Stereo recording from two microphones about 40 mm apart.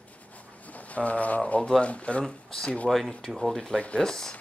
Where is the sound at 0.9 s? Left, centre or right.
Left.